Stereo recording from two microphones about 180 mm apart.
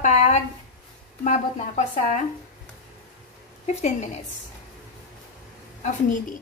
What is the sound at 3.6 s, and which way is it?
Speech, 40° left (ahead or behind).